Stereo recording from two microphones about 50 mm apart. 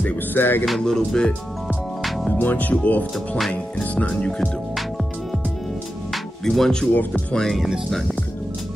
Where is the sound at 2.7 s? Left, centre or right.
Left.